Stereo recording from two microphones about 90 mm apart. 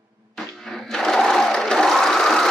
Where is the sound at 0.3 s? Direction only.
Centre (ahead or behind).